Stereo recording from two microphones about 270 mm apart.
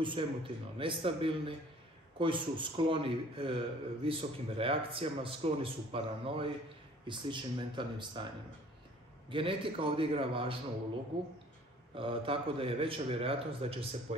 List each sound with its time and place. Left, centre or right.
0.0 s a man's voice: centre
9.3 s a man's voice: centre
11.9 s a man's voice: centre